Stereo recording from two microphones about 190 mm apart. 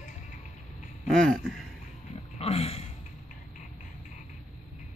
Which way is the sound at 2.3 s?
30° left (ahead or behind).